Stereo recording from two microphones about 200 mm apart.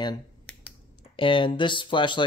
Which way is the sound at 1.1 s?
25° left (ahead or behind).